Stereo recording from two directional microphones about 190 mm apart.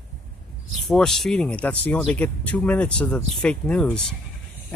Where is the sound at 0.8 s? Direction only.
Centre (ahead or behind).